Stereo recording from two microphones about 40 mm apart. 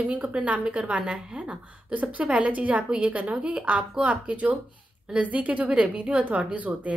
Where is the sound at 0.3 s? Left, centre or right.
Right.